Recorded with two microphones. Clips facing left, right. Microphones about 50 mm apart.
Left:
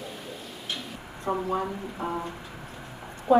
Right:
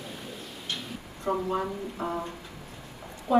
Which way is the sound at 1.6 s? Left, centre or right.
Centre.